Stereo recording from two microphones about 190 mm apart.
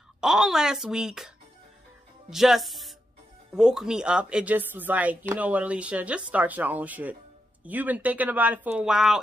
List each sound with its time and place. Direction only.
0.2 s a woman's voice: 5° right (ahead or behind)